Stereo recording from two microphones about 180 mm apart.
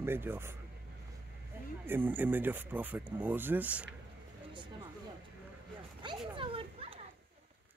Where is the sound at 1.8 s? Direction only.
10° right (ahead or behind).